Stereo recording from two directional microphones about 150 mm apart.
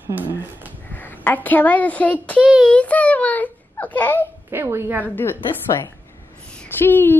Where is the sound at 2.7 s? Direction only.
10° left (ahead or behind).